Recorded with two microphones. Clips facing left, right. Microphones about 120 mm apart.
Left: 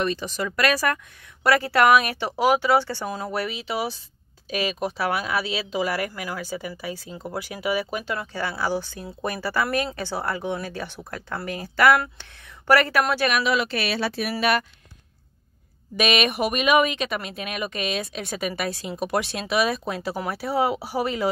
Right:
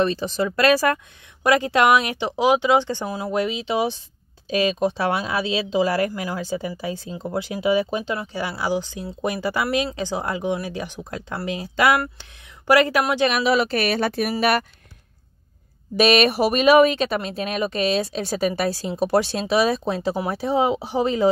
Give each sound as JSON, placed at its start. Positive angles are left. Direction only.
{"t": 0.0, "sound": "speech", "side_deg": -30}
{"t": 1.4, "sound": "speech", "side_deg": -20}
{"t": 13.3, "sound": "speech", "side_deg": -35}
{"t": 16.0, "sound": "speech", "side_deg": -35}